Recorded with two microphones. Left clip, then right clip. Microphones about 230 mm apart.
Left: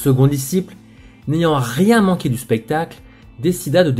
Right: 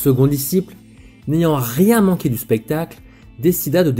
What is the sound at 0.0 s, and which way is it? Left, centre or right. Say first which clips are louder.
Speech: right 1 dB; right.